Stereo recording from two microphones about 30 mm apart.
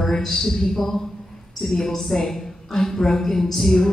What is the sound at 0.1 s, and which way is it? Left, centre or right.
A woman's voice, centre.